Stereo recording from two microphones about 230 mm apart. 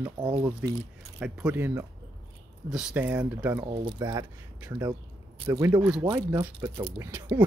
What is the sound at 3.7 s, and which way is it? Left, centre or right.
Speech, centre.